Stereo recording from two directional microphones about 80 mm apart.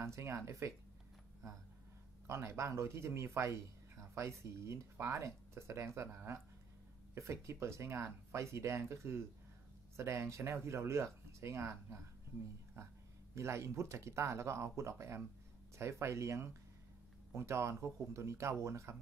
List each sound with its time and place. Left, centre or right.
0.0 s speech: right
2.2 s speech: right
13.3 s speech: right